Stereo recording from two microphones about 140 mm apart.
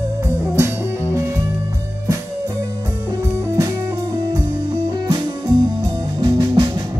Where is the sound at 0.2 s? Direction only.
20° right (ahead or behind).